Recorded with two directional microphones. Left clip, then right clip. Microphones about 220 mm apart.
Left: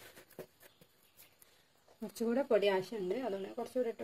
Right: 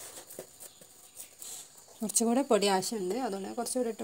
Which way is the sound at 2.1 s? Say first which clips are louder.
Right 5 dB; 35° right (ahead or behind).